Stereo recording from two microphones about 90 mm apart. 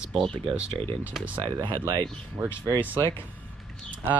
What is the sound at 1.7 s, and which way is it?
Speech, 45° right (ahead or behind).